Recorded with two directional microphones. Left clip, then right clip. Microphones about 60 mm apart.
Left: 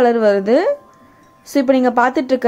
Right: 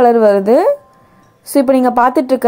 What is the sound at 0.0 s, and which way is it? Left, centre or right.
A woman's voice, right.